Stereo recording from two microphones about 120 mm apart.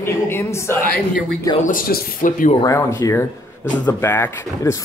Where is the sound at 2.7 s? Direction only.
25° left (ahead or behind).